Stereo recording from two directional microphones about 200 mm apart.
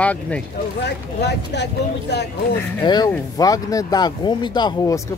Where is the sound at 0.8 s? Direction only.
60° left (ahead or behind).